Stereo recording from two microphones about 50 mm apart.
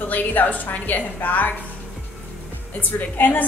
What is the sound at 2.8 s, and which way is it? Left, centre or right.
Speech, left.